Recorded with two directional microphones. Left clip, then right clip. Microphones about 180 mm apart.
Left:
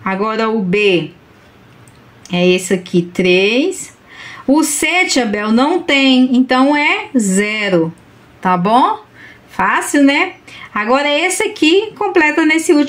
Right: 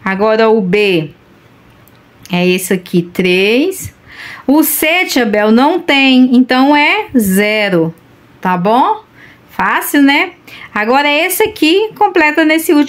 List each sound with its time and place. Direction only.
0.0 s speech: 30° right (ahead or behind)
2.2 s speech: 30° right (ahead or behind)
8.4 s speech: 15° right (ahead or behind)
9.5 s a sound: 10° right (ahead or behind)
9.8 s speech: 25° right (ahead or behind)